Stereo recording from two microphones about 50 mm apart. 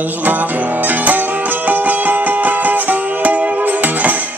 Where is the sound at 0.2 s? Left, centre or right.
Right.